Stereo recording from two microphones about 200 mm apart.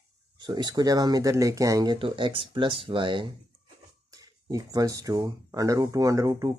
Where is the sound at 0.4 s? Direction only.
20° right (ahead or behind).